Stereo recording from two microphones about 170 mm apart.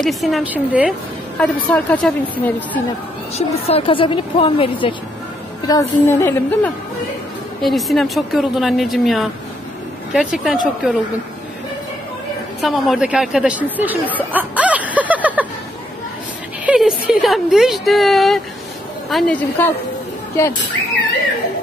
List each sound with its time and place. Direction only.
0.0 s a woman's voice: centre (ahead or behind)
1.4 s a woman's voice: 10° left (ahead or behind)
3.3 s a woman's voice: 35° left (ahead or behind)
5.7 s a woman's voice: 15° left (ahead or behind)
7.6 s a woman's voice: centre (ahead or behind)
12.5 s speech: centre (ahead or behind)
16.6 s a woman's voice: 5° right (ahead or behind); by 19.7 s 10° left (ahead or behind)